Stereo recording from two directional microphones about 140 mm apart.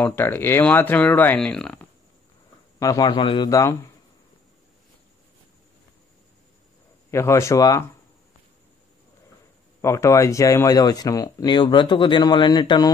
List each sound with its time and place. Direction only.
0.0 s speech: 15° left (ahead or behind)
2.8 s speech: 25° left (ahead or behind)
7.1 s speech: 20° left (ahead or behind)
9.8 s speech: 20° left (ahead or behind)